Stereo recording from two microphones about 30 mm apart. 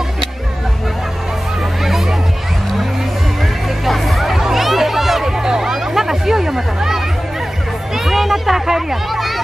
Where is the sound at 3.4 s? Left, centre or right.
Centre.